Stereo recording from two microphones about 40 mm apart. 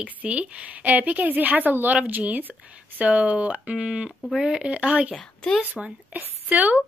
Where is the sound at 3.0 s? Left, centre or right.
Right.